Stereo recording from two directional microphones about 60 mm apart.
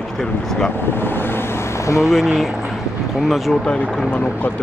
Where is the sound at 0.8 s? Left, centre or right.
Left.